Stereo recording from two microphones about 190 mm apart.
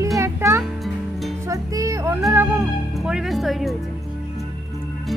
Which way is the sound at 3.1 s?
Centre (ahead or behind).